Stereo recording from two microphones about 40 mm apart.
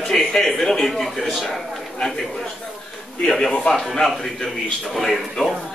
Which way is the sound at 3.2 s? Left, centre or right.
Centre.